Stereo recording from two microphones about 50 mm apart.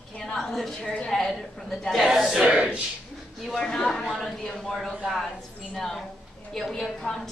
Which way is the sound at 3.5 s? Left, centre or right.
Centre.